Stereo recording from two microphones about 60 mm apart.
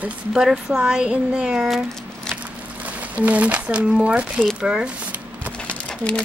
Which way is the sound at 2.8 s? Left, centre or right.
Right.